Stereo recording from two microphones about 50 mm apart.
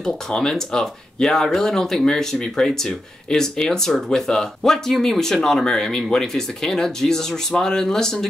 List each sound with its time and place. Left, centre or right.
0.0 s speech: centre